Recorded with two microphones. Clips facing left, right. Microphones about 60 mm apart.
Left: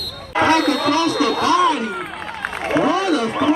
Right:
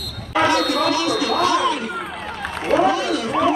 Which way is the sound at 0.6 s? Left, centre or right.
Centre.